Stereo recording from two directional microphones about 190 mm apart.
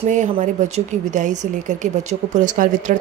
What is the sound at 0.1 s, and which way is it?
Speech, 40° right (ahead or behind).